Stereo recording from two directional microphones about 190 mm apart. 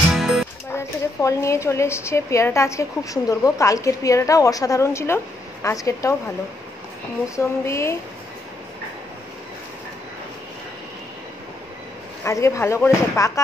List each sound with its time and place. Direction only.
0.1 s music: centre (ahead or behind)
0.7 s speech: 15° left (ahead or behind)
7.3 s speech: 15° left (ahead or behind)
12.3 s speech: 15° left (ahead or behind)